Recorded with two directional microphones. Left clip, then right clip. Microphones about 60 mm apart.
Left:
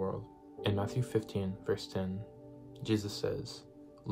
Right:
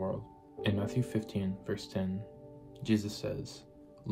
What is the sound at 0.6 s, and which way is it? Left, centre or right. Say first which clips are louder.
Speech: right 1 dB; centre.